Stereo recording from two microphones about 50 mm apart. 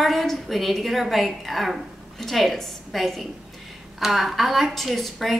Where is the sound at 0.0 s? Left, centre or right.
Centre.